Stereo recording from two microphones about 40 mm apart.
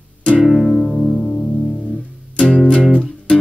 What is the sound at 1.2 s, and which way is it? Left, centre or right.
Music, left.